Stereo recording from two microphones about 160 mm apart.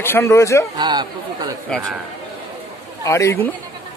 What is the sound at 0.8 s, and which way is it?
Speech, 25° right (ahead or behind).